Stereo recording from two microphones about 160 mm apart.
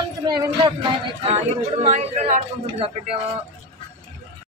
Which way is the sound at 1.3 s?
40° right (ahead or behind).